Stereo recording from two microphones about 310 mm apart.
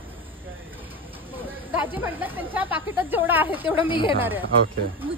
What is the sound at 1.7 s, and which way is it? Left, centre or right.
Speech, centre.